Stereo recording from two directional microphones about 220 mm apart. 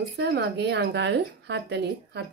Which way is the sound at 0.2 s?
50° right (ahead or behind).